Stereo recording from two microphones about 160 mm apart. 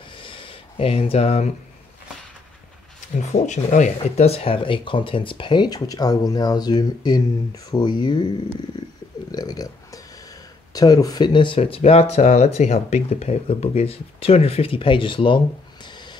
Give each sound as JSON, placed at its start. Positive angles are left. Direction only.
{"t": 0.1, "sound": "a sound", "side_deg": 30}
{"t": 3.4, "sound": "speech", "side_deg": 50}
{"t": 9.3, "sound": "speech", "side_deg": 25}